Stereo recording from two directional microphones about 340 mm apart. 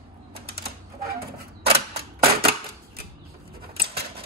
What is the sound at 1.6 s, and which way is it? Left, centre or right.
Mechanisms, centre.